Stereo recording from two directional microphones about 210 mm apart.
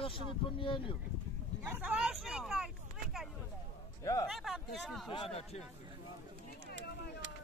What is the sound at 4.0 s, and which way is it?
Speech, 15° left (ahead or behind).